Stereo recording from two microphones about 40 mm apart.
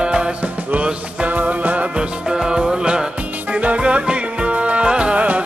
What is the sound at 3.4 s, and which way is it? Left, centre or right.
Music, right.